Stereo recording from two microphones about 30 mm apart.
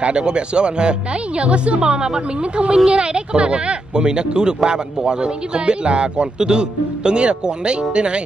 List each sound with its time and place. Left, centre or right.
0.0 s speech: right